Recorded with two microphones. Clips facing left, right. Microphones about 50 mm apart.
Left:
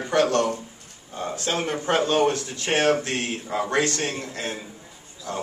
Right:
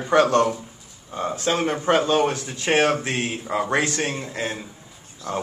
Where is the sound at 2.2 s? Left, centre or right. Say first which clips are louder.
Even; right.